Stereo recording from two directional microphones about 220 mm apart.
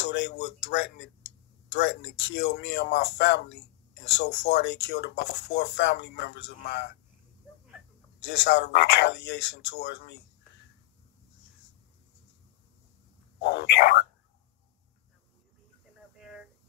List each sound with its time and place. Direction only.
0.0 s speech: 50° left (ahead or behind)
8.5 s speech: 50° left (ahead or behind)
13.4 s speech: 50° left (ahead or behind)
16.2 s a sound: centre (ahead or behind)